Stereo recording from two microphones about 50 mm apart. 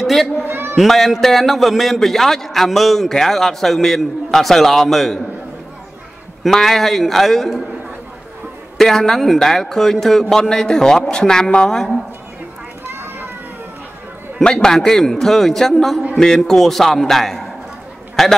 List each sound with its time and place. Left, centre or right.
0.0 s a sound: centre
0.4 s a sound: right
0.7 s a man's voice: centre
6.5 s a man's voice: centre
8.7 s a man's voice: centre
12.9 s children playing: right
14.4 s a man's voice: centre